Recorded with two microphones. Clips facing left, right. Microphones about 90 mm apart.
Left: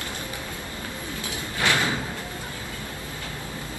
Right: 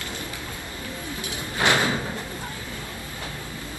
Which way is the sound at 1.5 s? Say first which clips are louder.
Right 3 dB; 20° right (ahead or behind).